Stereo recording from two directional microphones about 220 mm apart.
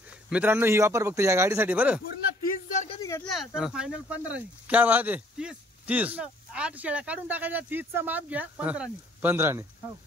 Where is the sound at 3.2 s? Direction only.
Centre (ahead or behind).